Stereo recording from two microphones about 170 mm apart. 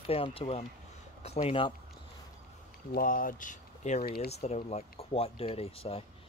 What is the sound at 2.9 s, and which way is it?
Speech, 55° left (ahead or behind).